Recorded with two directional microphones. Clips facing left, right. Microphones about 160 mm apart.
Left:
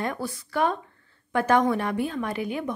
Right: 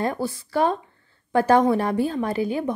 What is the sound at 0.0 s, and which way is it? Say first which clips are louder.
A woman's voice: right 5 dB; 30° right (ahead or behind).